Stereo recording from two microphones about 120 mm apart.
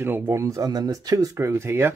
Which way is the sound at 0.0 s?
20° right (ahead or behind).